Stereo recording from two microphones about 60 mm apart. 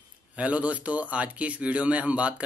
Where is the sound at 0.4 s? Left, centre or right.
Right.